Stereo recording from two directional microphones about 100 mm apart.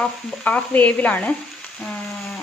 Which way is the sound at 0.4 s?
15° left (ahead or behind).